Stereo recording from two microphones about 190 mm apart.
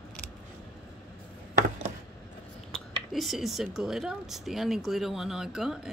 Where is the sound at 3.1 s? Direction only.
Centre (ahead or behind).